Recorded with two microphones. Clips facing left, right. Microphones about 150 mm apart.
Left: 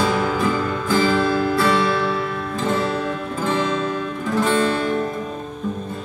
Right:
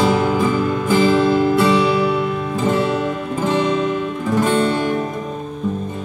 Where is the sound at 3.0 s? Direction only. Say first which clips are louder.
Right 3 dB; 15° right (ahead or behind).